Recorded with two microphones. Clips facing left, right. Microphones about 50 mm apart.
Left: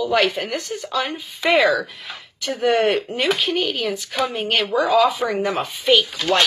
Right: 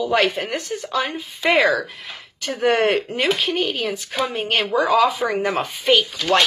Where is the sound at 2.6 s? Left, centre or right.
Right.